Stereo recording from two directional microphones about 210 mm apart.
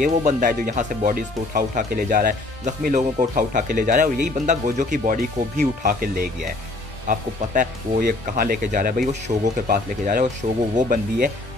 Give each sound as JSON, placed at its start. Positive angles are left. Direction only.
{"t": 0.0, "sound": "speech", "side_deg": -40}